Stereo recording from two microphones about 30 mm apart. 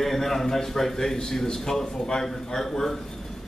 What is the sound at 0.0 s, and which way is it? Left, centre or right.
A man's voice, centre.